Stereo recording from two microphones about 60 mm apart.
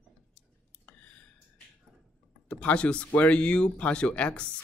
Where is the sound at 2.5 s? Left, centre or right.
Centre.